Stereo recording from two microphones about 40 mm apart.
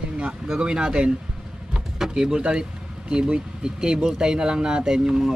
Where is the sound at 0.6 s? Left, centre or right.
Right.